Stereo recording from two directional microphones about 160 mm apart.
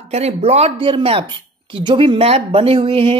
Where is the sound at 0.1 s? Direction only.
40° right (ahead or behind).